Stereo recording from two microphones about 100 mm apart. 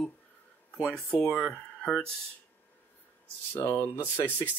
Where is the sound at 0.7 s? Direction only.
10° left (ahead or behind).